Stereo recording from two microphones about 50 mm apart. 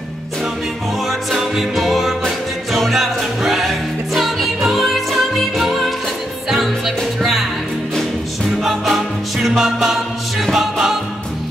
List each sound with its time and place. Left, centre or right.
1.0 s music: centre
7.2 s music: centre
8.8 s music: centre